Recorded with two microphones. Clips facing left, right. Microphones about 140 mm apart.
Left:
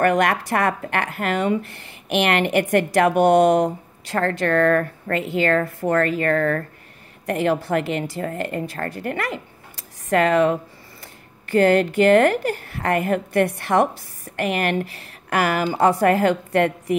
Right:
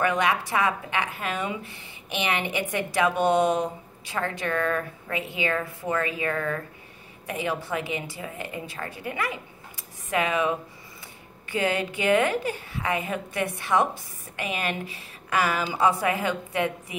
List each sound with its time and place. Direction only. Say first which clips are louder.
0.0 s a woman's voice: left 6 dB; 65° left (ahead or behind)